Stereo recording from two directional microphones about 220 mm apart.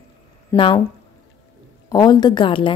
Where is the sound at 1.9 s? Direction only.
20° left (ahead or behind).